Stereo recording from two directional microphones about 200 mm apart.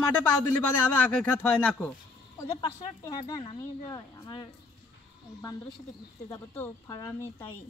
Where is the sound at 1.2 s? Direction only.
5° left (ahead or behind).